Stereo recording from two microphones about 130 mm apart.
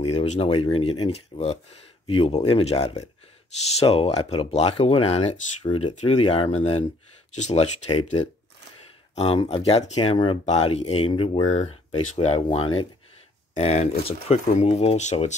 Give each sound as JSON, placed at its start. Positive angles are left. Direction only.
{"t": 0.0, "sound": "speech", "side_deg": 50}
{"t": 5.9, "sound": "speech", "side_deg": 55}
{"t": 7.3, "sound": "speech", "side_deg": 60}
{"t": 7.9, "sound": "speech", "side_deg": 40}
{"t": 10.4, "sound": "speech", "side_deg": 55}
{"t": 12.2, "sound": "speech", "side_deg": 55}